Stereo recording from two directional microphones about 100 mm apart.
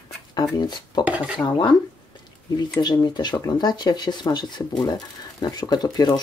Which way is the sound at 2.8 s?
45° left (ahead or behind).